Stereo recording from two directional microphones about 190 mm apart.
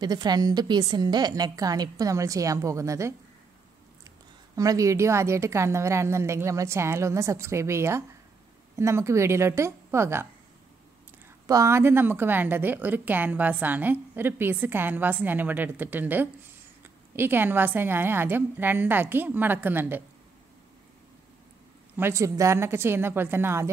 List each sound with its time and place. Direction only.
0.0 s a woman's voice: 20° right (ahead or behind)
4.6 s a woman's voice: 15° right (ahead or behind)
11.4 s a woman's voice: 15° right (ahead or behind)
21.9 s a woman's voice: 15° right (ahead or behind)